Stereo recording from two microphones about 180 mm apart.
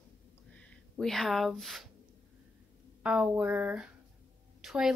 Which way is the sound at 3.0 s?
5° right (ahead or behind).